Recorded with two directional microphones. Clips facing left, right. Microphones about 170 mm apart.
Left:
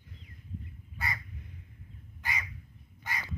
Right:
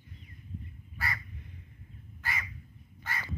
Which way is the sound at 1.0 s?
20° left (ahead or behind).